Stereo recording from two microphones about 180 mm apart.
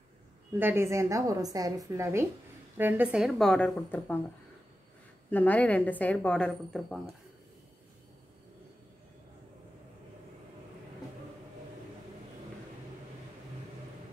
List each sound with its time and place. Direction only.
0.6 s a woman's voice: 10° right (ahead or behind); by 4.2 s 10° left (ahead or behind)
5.3 s a woman's voice: 10° left (ahead or behind)